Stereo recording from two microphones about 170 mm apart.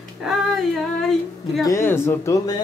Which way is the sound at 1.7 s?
15° left (ahead or behind).